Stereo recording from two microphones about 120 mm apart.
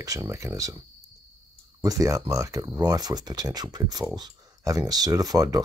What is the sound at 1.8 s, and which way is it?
Speech, 30° right (ahead or behind).